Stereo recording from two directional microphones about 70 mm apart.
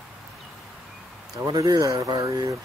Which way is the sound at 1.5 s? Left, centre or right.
Right.